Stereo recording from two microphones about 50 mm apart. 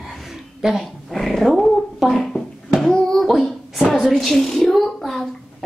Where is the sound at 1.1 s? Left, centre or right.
Centre.